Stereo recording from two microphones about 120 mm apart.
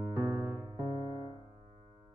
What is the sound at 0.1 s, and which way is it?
Music, 30° right (ahead or behind).